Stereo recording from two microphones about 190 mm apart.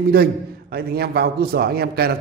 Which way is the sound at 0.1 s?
55° right (ahead or behind).